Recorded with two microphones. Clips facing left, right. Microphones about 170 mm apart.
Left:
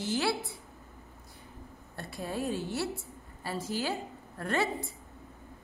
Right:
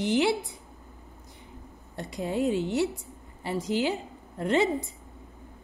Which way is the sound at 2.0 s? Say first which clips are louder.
Right 7 dB; 20° right (ahead or behind).